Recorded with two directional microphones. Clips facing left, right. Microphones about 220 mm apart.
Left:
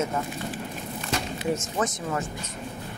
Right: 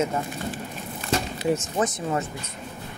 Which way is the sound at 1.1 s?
30° right (ahead or behind).